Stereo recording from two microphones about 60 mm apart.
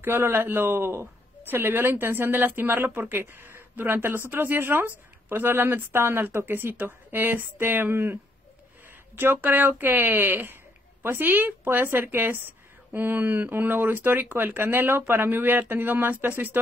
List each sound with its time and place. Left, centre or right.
0.0 s speech: right